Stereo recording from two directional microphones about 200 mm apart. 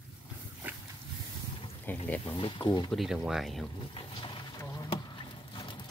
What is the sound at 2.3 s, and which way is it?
Speech, 25° left (ahead or behind).